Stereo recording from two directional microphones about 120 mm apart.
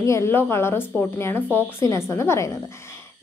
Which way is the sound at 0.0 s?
25° left (ahead or behind).